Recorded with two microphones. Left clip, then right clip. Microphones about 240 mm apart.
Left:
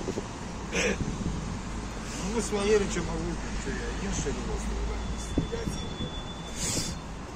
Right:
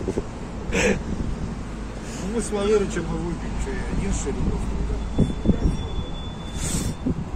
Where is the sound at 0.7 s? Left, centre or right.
Right.